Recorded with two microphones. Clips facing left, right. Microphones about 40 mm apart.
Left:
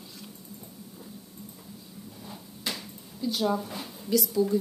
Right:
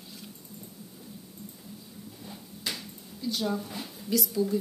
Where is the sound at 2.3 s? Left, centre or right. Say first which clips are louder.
Left 1 dB; centre.